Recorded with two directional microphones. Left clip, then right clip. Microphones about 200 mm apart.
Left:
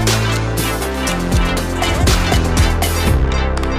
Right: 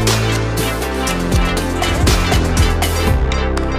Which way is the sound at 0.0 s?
Centre (ahead or behind).